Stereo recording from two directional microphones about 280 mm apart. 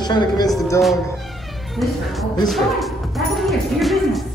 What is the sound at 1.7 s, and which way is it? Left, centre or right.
Speech, centre.